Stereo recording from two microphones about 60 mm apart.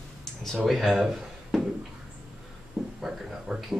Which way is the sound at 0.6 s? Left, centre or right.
Centre.